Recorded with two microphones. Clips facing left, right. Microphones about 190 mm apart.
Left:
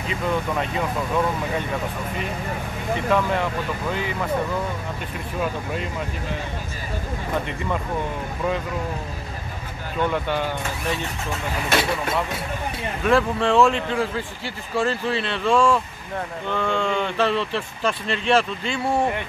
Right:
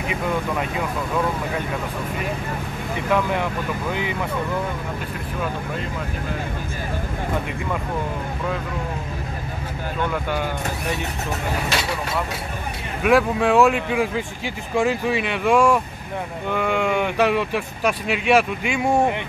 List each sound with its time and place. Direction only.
0.0 s speech: 10° right (ahead or behind)
13.0 s speech: 10° right (ahead or behind)